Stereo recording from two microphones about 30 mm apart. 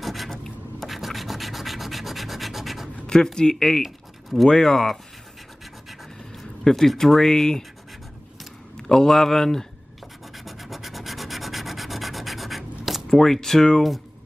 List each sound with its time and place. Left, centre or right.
0.0 s rub: centre
0.3 s rub: centre
0.8 s rub: centre
3.3 s speech: left
3.8 s a sound: centre
4.5 s speech: centre
6.6 s speech: centre
7.2 s speech: centre
8.8 s speech: centre
10.3 s scratch: centre
13.1 s speech: centre